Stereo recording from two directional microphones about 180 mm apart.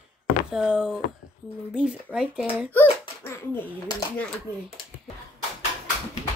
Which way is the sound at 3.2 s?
15° left (ahead or behind).